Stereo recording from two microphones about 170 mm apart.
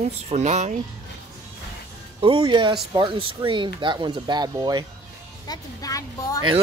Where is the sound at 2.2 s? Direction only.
30° right (ahead or behind).